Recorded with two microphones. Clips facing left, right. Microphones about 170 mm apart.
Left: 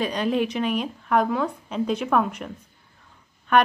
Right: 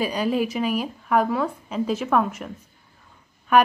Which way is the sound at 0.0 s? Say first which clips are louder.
Even; 5° right (ahead or behind).